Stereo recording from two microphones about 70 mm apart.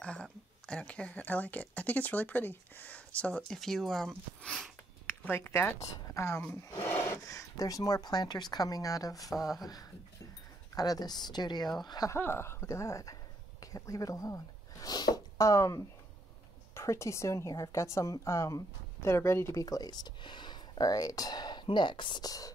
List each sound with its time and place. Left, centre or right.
0.0 s speech: centre
3.6 s speech: centre
5.2 s speech: left
5.8 s a woman's voice: left
6.4 s speech: left
7.2 s speech: left
12.2 s a woman's voice: left
19.6 s speech: left